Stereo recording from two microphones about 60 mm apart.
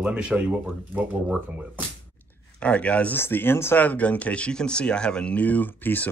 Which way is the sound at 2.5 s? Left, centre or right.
Left.